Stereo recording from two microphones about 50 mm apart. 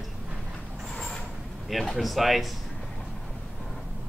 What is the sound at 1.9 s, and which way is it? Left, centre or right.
Speech, centre.